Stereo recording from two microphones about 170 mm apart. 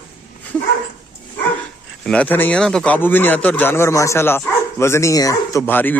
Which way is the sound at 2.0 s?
10° left (ahead or behind).